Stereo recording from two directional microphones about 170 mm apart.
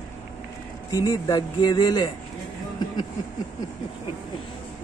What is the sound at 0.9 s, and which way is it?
Speech, 20° left (ahead or behind).